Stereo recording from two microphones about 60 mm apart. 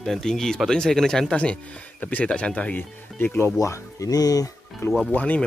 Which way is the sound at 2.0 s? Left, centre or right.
Left.